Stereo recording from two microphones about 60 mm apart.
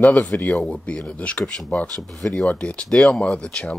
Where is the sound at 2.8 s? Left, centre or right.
Centre.